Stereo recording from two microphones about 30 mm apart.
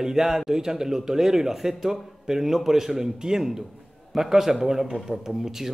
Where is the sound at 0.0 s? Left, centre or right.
Centre.